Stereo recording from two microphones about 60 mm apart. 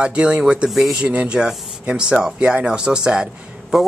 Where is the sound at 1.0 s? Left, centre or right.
Right.